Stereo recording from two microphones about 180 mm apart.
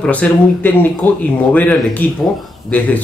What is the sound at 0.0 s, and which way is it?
Speech, 10° left (ahead or behind).